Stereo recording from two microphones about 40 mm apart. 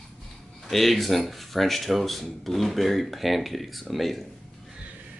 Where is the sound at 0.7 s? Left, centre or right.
Centre.